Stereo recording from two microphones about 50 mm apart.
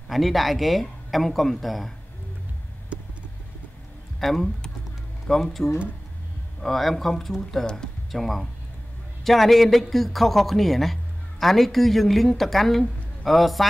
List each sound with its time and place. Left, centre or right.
0.1 s a man's voice: centre
2.9 s vehicle: right
4.2 s a man's voice: centre
8.1 s a man's voice: centre